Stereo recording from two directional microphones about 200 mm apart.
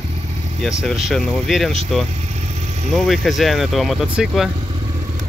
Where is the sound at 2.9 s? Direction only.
Centre (ahead or behind).